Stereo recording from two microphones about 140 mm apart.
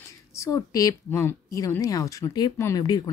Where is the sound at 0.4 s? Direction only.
25° left (ahead or behind).